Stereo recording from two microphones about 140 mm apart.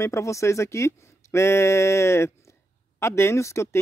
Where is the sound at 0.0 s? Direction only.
20° left (ahead or behind).